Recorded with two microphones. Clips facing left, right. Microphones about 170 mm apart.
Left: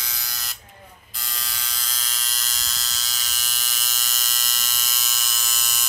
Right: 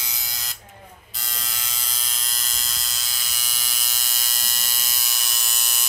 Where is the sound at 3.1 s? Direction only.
10° right (ahead or behind).